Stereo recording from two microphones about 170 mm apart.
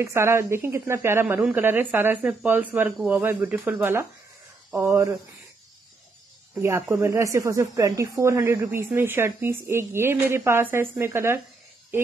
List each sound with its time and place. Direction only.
0.0 s speech: 15° right (ahead or behind)
6.5 s speech: 15° right (ahead or behind)